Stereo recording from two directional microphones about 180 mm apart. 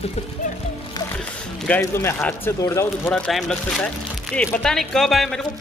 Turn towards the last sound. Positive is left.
turn(degrees=0)  # may be behind; listen again after turning